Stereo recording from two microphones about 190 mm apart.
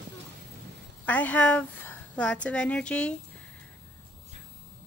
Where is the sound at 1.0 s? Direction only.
10° left (ahead or behind).